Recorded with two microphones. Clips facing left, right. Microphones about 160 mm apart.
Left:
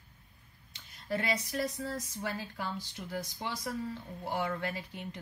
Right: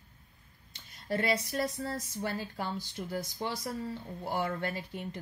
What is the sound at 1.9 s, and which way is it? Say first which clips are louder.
Speech: right 2 dB; 45° right (ahead or behind).